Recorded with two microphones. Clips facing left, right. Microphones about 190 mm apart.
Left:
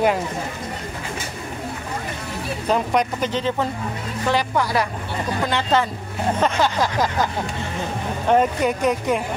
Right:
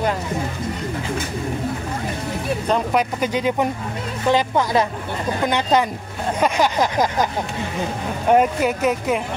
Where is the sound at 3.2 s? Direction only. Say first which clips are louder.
Right 2 dB; 10° right (ahead or behind).